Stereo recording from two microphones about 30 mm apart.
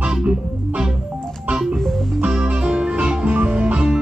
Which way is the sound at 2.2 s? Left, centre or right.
Right.